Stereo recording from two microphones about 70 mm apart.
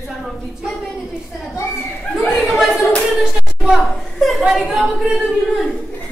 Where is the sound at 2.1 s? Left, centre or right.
Centre.